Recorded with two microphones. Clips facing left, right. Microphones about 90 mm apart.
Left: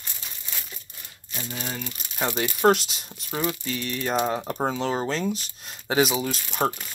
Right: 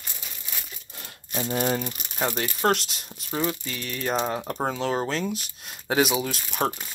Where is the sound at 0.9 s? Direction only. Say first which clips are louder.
Right 5 dB; 75° right (ahead or behind).